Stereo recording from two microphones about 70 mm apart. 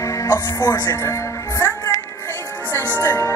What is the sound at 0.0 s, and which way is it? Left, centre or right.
Speech, left.